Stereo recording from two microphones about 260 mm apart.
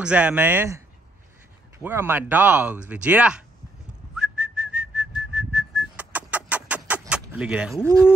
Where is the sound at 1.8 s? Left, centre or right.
Centre.